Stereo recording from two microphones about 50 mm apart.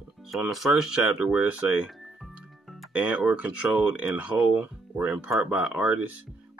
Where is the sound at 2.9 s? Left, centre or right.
Right.